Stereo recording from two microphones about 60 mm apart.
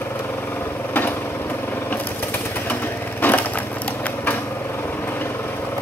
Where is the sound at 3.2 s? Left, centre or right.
Left.